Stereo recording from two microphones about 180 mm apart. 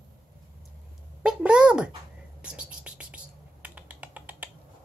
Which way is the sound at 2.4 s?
5° right (ahead or behind).